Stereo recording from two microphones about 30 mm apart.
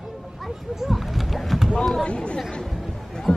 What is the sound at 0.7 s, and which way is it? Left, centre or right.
Speech, centre.